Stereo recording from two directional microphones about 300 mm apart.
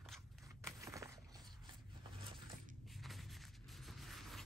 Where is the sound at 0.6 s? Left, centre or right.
Centre.